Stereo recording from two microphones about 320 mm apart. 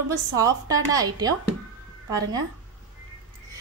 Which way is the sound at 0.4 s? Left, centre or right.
Centre.